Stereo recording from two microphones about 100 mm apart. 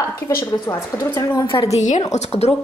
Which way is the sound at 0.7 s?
30° left (ahead or behind).